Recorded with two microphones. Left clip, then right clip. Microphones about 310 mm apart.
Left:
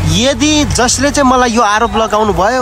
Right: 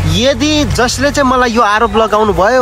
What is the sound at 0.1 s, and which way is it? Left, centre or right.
Speech, centre.